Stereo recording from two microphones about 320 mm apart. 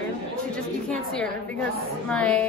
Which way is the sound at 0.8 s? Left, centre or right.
Centre.